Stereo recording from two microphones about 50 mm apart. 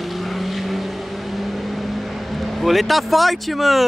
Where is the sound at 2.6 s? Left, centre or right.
Centre.